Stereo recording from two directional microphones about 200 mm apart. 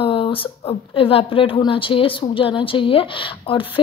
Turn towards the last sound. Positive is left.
turn(degrees=25)  # may be behind; listen again after turning